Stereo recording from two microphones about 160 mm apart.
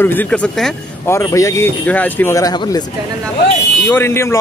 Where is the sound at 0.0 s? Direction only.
10° left (ahead or behind).